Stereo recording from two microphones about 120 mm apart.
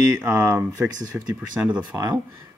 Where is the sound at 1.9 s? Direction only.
30° right (ahead or behind).